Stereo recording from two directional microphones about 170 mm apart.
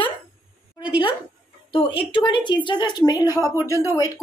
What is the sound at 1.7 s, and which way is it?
Speech, 30° left (ahead or behind).